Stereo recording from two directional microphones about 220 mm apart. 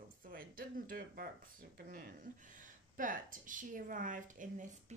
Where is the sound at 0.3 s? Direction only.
40° right (ahead or behind).